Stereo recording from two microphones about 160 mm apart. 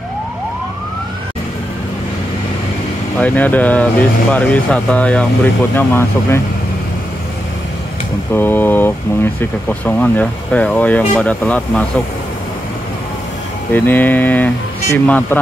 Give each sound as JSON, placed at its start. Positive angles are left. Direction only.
{"t": 3.2, "sound": "speech", "side_deg": 10}
{"t": 8.3, "sound": "speech", "side_deg": 15}
{"t": 13.7, "sound": "speech", "side_deg": 10}